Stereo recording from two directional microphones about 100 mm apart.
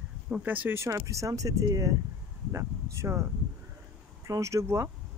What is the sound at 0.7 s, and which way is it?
Speech, 30° right (ahead or behind).